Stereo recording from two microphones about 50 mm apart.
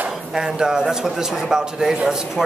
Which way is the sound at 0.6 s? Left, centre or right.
Centre.